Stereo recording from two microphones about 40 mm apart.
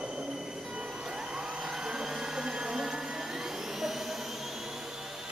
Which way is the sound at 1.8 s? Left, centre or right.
Centre.